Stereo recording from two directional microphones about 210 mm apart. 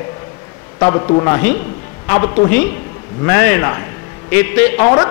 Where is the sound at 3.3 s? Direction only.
10° left (ahead or behind).